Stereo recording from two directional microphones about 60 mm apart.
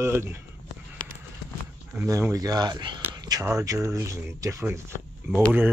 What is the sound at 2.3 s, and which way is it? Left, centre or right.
Speech, right.